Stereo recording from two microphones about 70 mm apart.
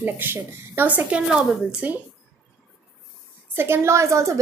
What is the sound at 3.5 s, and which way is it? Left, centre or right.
Speech, right.